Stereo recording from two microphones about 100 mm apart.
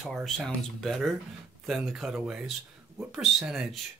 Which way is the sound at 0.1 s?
Centre (ahead or behind).